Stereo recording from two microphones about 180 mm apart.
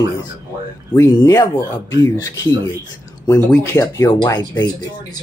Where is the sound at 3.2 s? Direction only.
15° left (ahead or behind).